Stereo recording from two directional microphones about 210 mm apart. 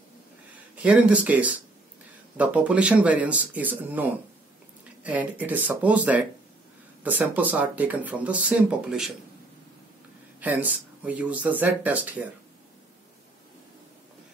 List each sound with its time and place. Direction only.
0.8 s speech: 5° right (ahead or behind)
10.4 s speech: 10° right (ahead or behind)